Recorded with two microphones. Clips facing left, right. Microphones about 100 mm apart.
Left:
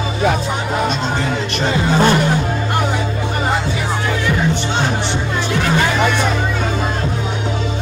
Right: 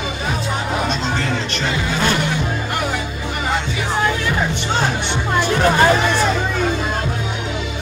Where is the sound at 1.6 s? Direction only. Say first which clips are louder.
Left 6 dB; 35° left (ahead or behind).